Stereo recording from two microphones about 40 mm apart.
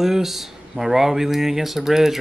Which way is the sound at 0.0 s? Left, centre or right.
Centre.